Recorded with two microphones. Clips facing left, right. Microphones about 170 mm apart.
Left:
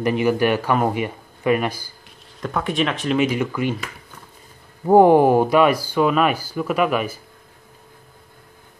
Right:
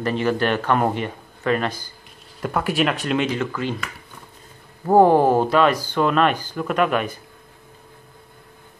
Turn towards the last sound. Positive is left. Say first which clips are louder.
# even
turn(degrees=5)  # may be behind; listen again after turning